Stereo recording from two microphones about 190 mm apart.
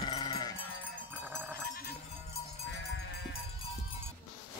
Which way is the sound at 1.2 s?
10° right (ahead or behind).